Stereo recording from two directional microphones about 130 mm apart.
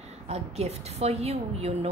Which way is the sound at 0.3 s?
55° right (ahead or behind).